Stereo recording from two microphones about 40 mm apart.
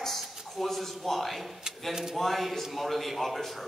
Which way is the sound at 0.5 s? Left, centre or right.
Centre.